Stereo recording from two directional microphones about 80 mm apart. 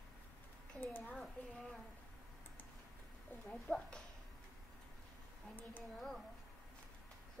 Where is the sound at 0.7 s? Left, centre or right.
Left.